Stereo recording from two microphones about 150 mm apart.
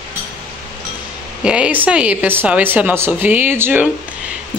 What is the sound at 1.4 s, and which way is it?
A woman's voice, 5° right (ahead or behind).